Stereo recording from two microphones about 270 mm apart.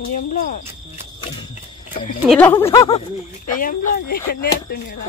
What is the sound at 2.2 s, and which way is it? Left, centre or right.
Speech, centre.